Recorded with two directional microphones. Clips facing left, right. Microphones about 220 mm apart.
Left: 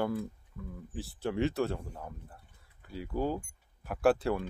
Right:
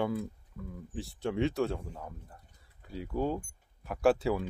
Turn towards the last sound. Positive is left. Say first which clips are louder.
# even
turn(degrees=0)  # may be behind; listen again after turning